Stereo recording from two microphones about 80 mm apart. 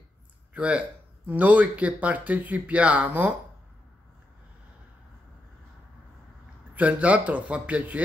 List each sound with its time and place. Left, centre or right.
0.6 s speech: centre
6.7 s a man's voice: centre